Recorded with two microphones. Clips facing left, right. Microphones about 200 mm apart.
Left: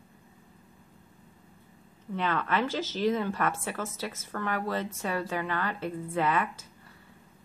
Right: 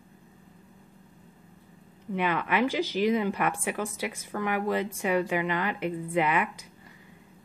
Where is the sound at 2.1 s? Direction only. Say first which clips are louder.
Right 2 dB; 15° right (ahead or behind).